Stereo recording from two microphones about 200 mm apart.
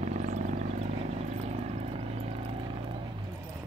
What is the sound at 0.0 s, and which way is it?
Vehicle, 35° right (ahead or behind).